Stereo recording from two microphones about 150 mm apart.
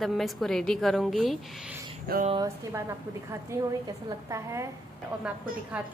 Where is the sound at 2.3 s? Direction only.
20° right (ahead or behind).